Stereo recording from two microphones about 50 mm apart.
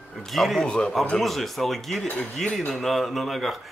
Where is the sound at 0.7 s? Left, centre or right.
Centre.